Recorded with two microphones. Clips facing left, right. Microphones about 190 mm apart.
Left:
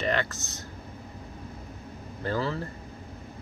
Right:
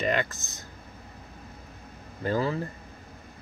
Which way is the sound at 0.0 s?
15° right (ahead or behind).